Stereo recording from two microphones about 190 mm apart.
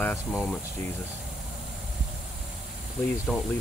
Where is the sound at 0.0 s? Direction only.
5° left (ahead or behind).